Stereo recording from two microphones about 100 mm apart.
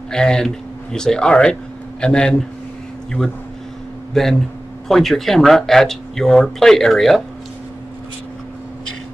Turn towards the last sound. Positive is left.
turn(degrees=0)  # may be behind; listen again after turning